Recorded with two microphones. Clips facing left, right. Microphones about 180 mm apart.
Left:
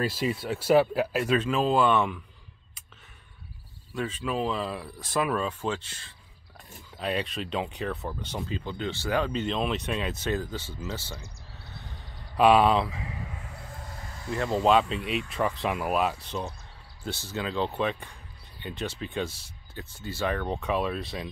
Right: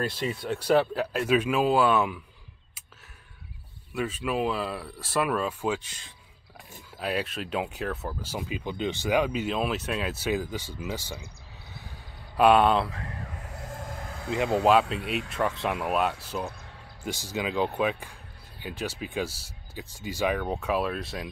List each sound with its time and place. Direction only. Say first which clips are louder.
0.0 s speech: left 2 dB; 5° left (ahead or behind)
1.3 s speech: right 2 dB; 10° right (ahead or behind)
3.9 s speech: right 1 dB; 10° right (ahead or behind)
11.7 s a sound: even; 5° right (ahead or behind)
13.6 s vehicle: right 5 dB; 45° right (ahead or behind)
14.6 s speech: left 1 dB; 5° right (ahead or behind)
17.0 s speech: right 2 dB; 10° right (ahead or behind)